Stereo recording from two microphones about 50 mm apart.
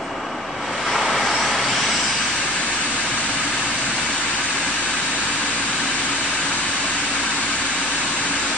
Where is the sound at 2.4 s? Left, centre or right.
Left.